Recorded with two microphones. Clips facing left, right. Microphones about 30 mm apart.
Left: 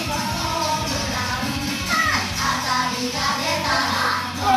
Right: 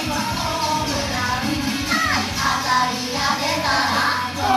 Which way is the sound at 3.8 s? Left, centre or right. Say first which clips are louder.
Right 2 dB; centre.